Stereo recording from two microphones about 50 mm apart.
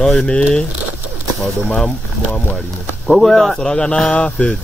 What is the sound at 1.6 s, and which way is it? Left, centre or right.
Speech, centre.